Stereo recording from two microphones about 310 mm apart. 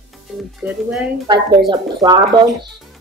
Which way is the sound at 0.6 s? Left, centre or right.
Centre.